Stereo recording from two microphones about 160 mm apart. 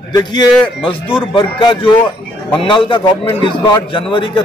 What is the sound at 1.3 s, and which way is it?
A man's voice, 30° left (ahead or behind).